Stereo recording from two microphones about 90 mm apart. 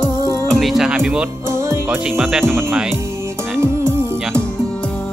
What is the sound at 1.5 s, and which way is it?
Music, 30° right (ahead or behind).